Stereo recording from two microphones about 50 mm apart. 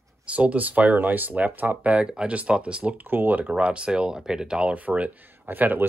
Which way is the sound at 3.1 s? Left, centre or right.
Right.